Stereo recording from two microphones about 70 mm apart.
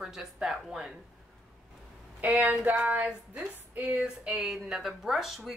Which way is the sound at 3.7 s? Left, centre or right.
Centre.